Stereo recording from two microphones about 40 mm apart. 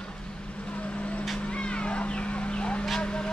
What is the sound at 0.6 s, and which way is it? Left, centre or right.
Vehicle, left.